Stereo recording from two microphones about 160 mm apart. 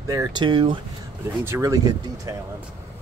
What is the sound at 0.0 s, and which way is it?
Speech, 20° right (ahead or behind).